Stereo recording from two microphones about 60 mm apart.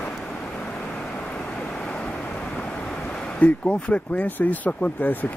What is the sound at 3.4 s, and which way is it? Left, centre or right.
Speech, left.